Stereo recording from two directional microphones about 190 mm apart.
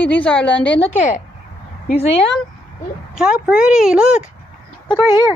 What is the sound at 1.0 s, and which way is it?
Speech, 40° left (ahead or behind).